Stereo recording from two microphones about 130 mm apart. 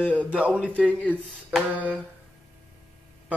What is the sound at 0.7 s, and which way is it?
Speech, 10° left (ahead or behind).